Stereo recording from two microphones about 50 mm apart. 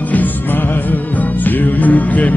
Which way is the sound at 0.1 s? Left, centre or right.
Left.